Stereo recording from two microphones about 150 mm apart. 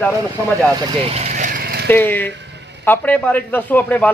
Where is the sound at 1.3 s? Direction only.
60° right (ahead or behind); by 1.9 s 90° right.